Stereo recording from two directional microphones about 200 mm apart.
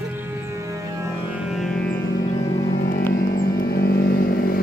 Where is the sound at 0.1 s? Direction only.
15° right (ahead or behind).